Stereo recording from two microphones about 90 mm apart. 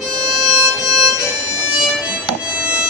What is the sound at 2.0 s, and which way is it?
Music, 10° right (ahead or behind).